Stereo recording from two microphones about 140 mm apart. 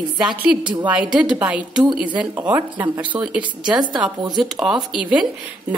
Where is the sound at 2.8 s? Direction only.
35° right (ahead or behind).